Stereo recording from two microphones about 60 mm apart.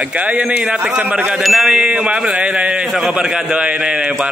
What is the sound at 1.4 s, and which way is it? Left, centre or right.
Speech, centre.